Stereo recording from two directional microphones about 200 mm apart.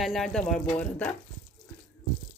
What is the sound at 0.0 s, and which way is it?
Speech, centre (ahead or behind).